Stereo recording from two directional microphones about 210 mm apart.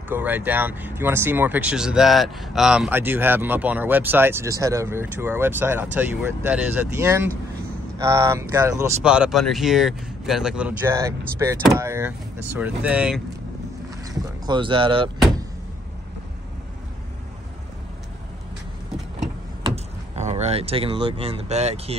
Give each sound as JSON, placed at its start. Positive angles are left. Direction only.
{"t": 0.1, "sound": "speech", "side_deg": -10}
{"t": 14.4, "sound": "speech", "side_deg": -20}
{"t": 19.6, "sound": "speech", "side_deg": -30}